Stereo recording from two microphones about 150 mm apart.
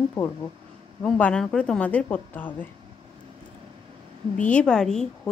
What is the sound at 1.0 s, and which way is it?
Speech, 10° left (ahead or behind).